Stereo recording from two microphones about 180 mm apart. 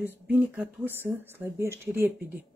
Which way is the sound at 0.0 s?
10° right (ahead or behind).